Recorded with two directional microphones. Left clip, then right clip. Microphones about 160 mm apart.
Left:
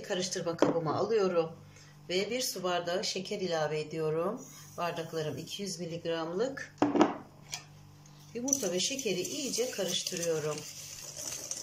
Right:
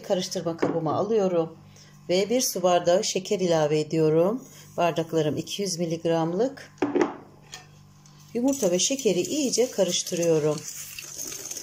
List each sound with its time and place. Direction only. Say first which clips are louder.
0.1 s speech: right 7 dB; 25° right (ahead or behind)
2.0 s speech: right 9 dB; 40° right (ahead or behind)
6.3 s speech: right 7 dB; 30° right (ahead or behind)
8.3 s speech: right 9 dB; 40° right (ahead or behind)